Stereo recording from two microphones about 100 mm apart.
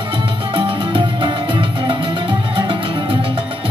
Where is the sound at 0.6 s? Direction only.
60° right (ahead or behind).